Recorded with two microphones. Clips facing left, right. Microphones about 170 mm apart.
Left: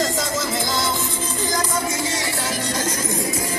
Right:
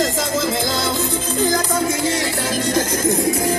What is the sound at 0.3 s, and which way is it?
Music, 60° right (ahead or behind).